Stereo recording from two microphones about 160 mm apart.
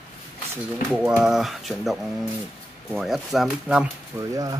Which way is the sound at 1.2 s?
5° right (ahead or behind).